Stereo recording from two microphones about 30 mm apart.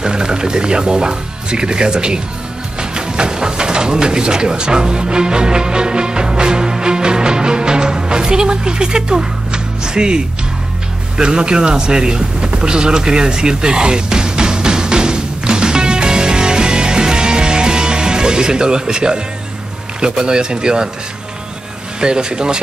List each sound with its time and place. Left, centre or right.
0.0 s speech: right
2.8 s pigeon: right
11.1 s speech: right
12.6 s music: right
20.0 s speech: right
22.0 s speech: right